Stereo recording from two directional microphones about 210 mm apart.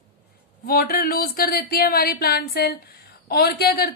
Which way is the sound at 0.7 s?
45° left (ahead or behind).